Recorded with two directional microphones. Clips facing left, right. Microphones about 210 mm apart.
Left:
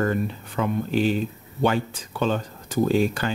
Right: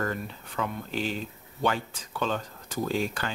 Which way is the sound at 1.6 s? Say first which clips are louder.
Left 6 dB; 25° left (ahead or behind).